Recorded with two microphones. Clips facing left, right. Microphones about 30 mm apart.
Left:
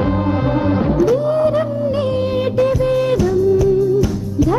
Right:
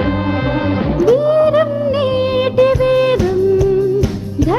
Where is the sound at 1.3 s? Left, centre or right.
Right.